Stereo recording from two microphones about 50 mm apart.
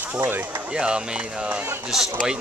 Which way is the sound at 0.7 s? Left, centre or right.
Centre.